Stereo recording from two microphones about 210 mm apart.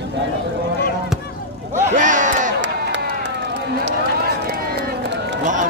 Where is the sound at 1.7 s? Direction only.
35° right (ahead or behind).